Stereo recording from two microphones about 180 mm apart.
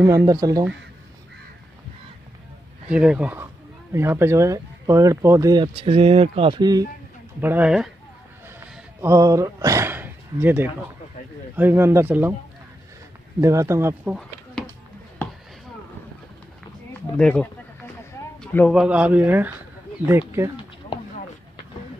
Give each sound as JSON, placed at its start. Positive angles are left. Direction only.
{"t": 0.0, "sound": "speech", "side_deg": -20}
{"t": 2.9, "sound": "speech", "side_deg": -5}
{"t": 7.4, "sound": "speech", "side_deg": -5}
{"t": 8.5, "sound": "a sound", "side_deg": -15}
{"t": 11.5, "sound": "speech", "side_deg": -10}
{"t": 13.4, "sound": "speech", "side_deg": -15}
{"t": 16.9, "sound": "speech", "side_deg": 5}
{"t": 18.4, "sound": "a sound", "side_deg": 10}
{"t": 18.7, "sound": "speech", "side_deg": -5}